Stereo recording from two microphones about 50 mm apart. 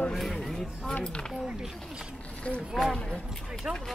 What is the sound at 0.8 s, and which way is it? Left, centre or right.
Speech, left.